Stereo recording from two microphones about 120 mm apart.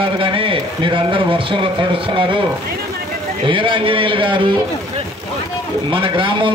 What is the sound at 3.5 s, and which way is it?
A man's voice, 45° right (ahead or behind).